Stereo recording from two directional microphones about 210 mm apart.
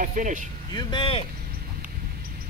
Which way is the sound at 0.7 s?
20° left (ahead or behind).